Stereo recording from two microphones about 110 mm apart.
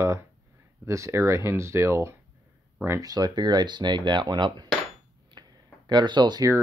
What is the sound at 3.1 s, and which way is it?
Speech, 40° right (ahead or behind).